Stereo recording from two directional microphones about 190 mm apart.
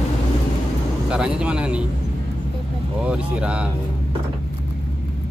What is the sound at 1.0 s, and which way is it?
Speech, 5° right (ahead or behind).